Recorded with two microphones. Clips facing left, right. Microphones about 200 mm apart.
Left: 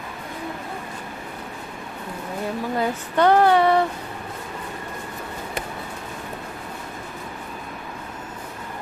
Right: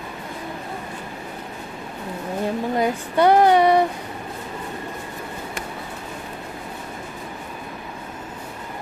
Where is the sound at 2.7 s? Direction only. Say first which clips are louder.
Right 1 dB; 15° right (ahead or behind).